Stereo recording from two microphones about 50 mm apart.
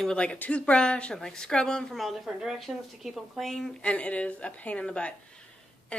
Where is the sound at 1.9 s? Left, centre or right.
Centre.